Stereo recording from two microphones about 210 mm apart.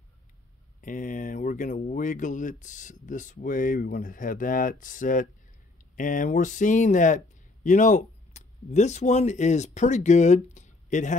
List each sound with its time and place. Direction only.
0.7 s speech: 40° left (ahead or behind)